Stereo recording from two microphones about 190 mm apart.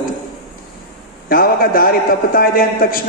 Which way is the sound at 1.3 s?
50° left (ahead or behind).